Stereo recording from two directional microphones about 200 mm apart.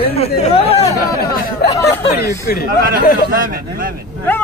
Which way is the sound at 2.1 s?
50° left (ahead or behind).